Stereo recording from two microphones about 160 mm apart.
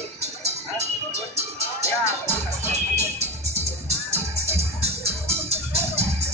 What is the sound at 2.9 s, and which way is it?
Music, 40° right (ahead or behind).